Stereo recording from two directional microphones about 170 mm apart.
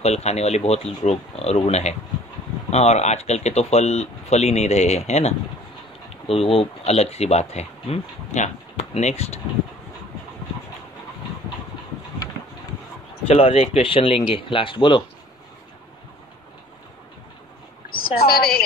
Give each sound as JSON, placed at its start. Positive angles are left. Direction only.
{"t": 0.0, "sound": "speech", "side_deg": 40}
{"t": 13.3, "sound": "speech", "side_deg": 35}
{"t": 17.8, "sound": "a woman's voice", "side_deg": 60}